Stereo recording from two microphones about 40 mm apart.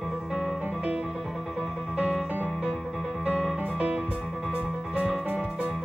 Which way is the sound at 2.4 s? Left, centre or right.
Centre.